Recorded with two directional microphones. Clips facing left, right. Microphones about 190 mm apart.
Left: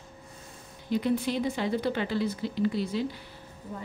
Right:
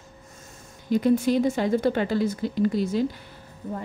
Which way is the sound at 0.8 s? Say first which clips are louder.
Right 6 dB; 45° right (ahead or behind).